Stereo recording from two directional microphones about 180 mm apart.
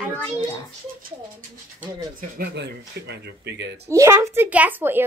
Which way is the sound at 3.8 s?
15° right (ahead or behind).